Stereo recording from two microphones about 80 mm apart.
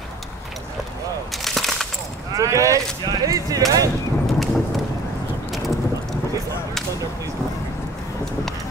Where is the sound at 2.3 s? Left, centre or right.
Right.